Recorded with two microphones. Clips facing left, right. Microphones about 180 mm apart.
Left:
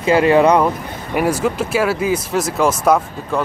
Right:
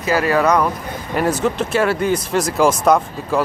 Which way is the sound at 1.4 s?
5° left (ahead or behind).